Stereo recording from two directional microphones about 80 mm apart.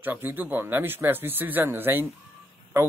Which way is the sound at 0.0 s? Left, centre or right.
Right.